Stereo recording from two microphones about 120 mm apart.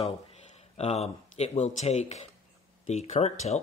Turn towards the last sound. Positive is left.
turn(degrees=65)  # may be behind; listen again after turning